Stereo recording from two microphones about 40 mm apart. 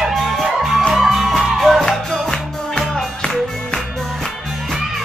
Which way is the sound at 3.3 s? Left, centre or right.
Centre.